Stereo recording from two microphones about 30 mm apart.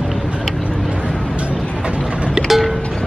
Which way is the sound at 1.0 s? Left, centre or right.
Right.